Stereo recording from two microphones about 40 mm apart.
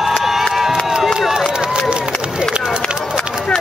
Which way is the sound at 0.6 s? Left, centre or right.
Centre.